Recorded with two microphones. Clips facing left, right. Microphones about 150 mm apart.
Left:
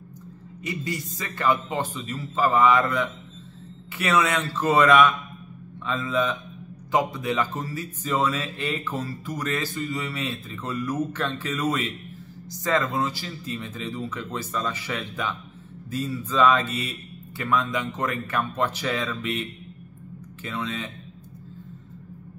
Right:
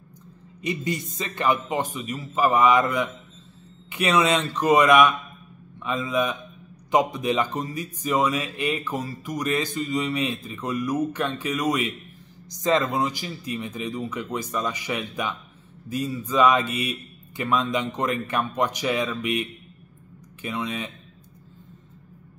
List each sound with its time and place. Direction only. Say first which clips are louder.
0.6 s speech: right 3 dB; 20° right (ahead or behind)